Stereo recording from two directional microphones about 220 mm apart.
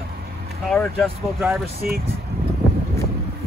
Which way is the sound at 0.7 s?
5° left (ahead or behind).